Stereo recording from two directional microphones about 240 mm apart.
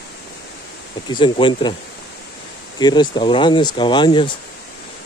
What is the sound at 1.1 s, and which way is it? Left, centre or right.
Speech, centre.